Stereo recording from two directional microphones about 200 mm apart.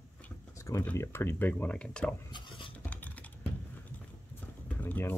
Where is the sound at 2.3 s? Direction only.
25° left (ahead or behind).